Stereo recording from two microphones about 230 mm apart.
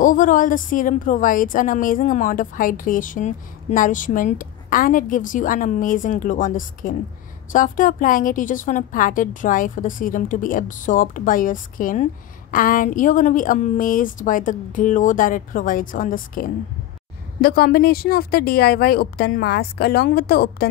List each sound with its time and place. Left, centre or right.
0.0 s a woman's voice: left